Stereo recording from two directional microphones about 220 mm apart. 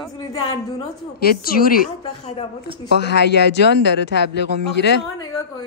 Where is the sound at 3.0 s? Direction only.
50° left (ahead or behind).